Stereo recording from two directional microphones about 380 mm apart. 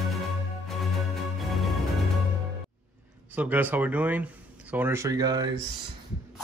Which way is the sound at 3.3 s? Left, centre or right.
Centre.